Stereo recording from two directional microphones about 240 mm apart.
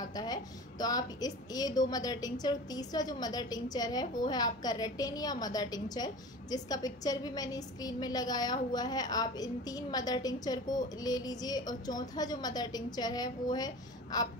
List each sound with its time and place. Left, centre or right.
0.0 s a woman's voice: centre